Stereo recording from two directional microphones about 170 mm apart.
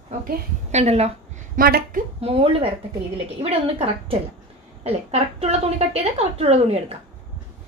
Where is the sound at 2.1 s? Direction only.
35° right (ahead or behind).